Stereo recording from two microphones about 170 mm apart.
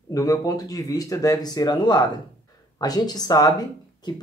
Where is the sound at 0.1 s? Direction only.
20° left (ahead or behind).